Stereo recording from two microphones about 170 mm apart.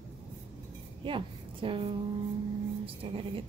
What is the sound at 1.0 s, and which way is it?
A woman's voice, 30° right (ahead or behind).